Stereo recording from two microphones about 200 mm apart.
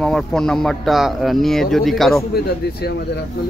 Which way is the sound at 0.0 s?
5° left (ahead or behind).